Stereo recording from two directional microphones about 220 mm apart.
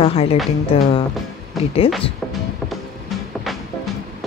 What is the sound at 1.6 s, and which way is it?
Music, centre (ahead or behind).